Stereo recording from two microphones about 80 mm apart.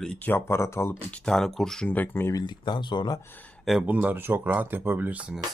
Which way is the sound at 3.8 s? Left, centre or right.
Centre.